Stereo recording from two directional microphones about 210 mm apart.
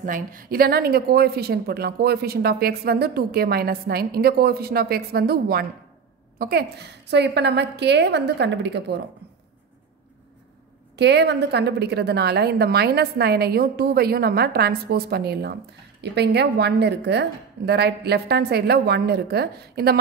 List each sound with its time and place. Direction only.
0.0 s a woman's voice: 40° right (ahead or behind)
11.0 s a woman's voice: 55° right (ahead or behind)